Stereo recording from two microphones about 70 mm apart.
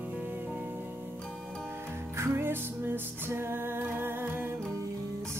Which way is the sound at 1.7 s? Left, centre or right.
Right.